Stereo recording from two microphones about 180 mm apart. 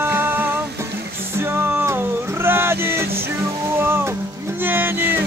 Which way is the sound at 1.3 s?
15° right (ahead or behind).